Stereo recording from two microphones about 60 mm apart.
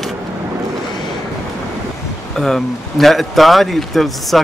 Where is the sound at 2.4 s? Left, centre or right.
Centre.